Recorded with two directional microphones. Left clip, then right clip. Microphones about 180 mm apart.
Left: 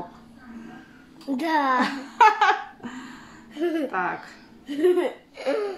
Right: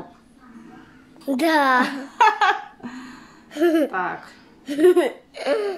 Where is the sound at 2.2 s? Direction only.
15° right (ahead or behind).